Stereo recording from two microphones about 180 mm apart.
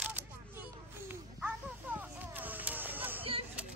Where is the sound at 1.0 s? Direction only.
10° right (ahead or behind).